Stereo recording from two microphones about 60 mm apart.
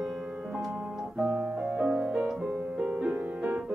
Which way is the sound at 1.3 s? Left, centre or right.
Right.